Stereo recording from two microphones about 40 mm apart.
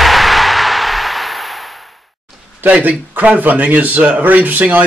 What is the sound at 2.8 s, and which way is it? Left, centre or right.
Speech, right.